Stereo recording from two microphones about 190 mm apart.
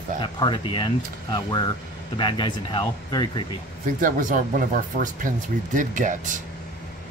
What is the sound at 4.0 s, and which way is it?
Speech, 45° right (ahead or behind).